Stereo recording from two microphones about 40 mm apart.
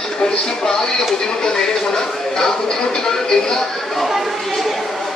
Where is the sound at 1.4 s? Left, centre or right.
Centre.